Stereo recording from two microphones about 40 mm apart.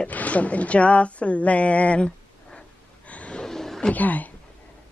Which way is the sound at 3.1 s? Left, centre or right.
Left.